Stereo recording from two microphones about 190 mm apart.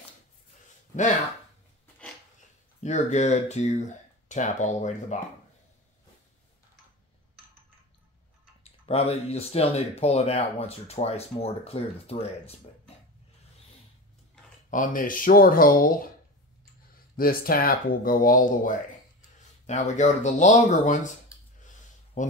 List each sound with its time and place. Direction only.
2.8 s speech: 35° left (ahead or behind)
8.8 s speech: 30° left (ahead or behind)
14.7 s speech: 45° left (ahead or behind)
17.2 s speech: 50° left (ahead or behind)
22.2 s speech: 40° left (ahead or behind)